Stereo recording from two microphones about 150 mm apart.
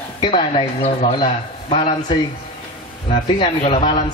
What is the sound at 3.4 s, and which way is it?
Speech, 40° left (ahead or behind).